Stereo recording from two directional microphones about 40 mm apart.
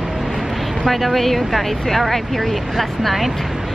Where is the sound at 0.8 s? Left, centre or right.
Centre.